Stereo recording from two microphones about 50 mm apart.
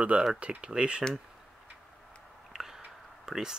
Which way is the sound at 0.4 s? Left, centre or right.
Right.